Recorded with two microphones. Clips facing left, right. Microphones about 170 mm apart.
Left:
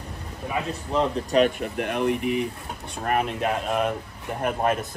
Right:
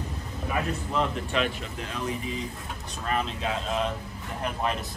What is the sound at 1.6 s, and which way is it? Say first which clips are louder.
Speech: left 9 dB; 60° left (ahead or behind).